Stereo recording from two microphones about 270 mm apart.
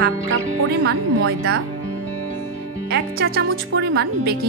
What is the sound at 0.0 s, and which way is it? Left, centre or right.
Speech, right.